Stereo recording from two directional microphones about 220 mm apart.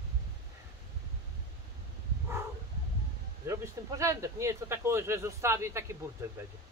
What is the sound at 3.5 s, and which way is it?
Speech, 15° right (ahead or behind).